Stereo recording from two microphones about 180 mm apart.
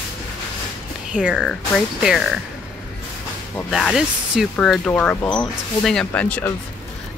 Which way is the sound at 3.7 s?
Centre (ahead or behind).